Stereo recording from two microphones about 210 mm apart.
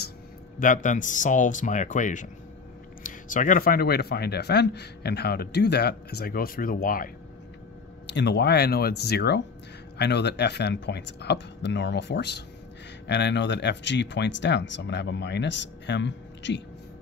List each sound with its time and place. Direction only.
0.6 s speech: 40° left (ahead or behind)
8.1 s speech: 55° left (ahead or behind)